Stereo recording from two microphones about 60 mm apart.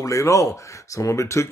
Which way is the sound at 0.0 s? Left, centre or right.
Left.